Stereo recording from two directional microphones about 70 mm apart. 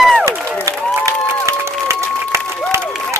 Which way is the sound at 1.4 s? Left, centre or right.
Right.